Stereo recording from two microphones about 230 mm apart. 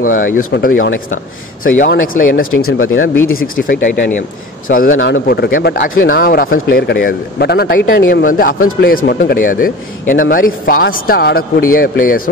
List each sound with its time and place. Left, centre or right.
0.0 s a man's voice: left
2.5 s speech: left
3.3 s a man's voice: left
4.9 s a man's voice: left